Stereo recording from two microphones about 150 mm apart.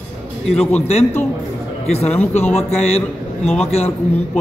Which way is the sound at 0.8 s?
45° left (ahead or behind).